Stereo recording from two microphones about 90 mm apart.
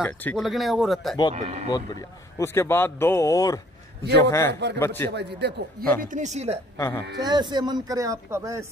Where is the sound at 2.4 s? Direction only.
25° left (ahead or behind).